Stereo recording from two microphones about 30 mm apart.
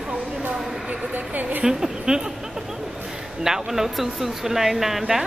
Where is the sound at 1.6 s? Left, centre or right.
Centre.